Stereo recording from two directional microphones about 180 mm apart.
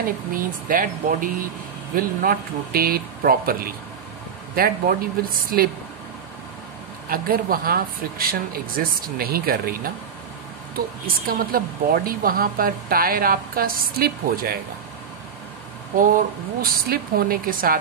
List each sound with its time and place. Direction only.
0.0 s speech: 50° right (ahead or behind)
7.1 s speech: 50° right (ahead or behind)
11.1 s speech: 55° right (ahead or behind)
16.6 s speech: 55° right (ahead or behind)